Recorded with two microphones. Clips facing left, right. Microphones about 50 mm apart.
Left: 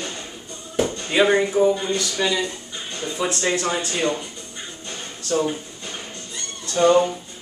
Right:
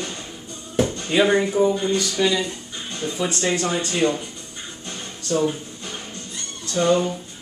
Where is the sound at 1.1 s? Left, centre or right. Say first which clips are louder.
Left 1 dB; centre.